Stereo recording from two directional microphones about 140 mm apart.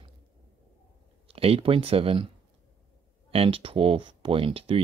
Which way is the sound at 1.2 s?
45° right (ahead or behind).